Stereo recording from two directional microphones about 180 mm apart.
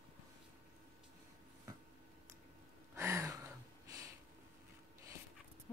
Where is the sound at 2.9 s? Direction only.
15° right (ahead or behind).